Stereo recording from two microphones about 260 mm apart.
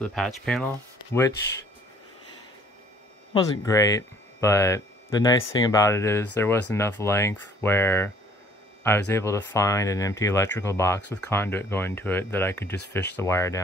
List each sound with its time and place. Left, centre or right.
0.0 s speech: centre
3.6 s speech: centre